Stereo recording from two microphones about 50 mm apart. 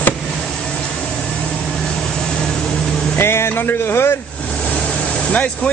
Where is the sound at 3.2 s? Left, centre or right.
Left.